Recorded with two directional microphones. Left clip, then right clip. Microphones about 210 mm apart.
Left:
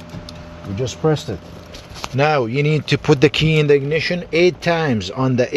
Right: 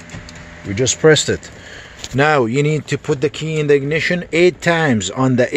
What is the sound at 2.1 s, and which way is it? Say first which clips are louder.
Speech: right 3 dB; 20° right (ahead or behind).